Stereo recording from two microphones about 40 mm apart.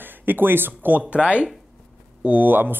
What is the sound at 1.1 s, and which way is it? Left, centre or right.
Speech, right.